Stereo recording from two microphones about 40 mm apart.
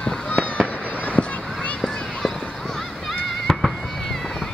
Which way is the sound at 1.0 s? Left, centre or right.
Left.